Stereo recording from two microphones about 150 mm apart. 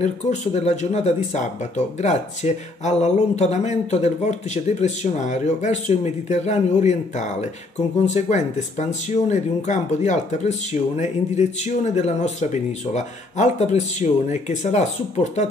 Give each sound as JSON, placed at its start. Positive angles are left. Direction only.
{"t": 0.0, "sound": "speech", "side_deg": 50}